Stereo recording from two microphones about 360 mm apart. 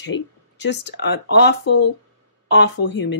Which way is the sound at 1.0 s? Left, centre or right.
Left.